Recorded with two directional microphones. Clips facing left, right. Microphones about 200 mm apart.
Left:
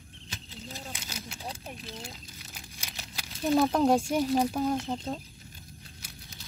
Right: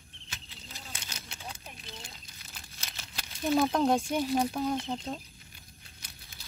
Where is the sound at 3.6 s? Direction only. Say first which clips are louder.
Left 3 dB; 5° left (ahead or behind).